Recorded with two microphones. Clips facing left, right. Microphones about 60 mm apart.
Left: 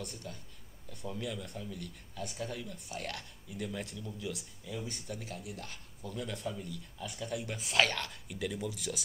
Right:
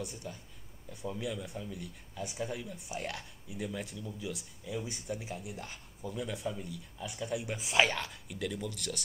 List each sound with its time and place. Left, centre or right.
0.0 s speech: centre